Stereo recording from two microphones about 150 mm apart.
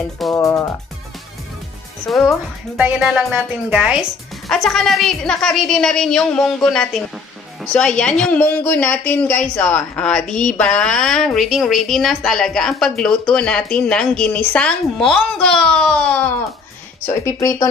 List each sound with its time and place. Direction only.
0.3 s speech: 20° left (ahead or behind)
2.0 s a woman's voice: centre (ahead or behind); by 17.6 s 20° left (ahead or behind)